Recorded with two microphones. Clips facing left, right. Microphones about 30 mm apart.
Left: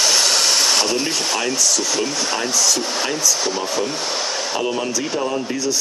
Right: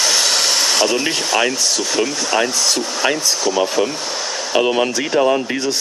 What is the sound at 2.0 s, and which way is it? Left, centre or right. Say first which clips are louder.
Speech: right 3 dB; centre.